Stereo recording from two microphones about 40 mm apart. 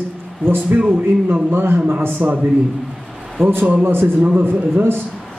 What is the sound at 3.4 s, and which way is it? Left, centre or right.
A man's voice, right.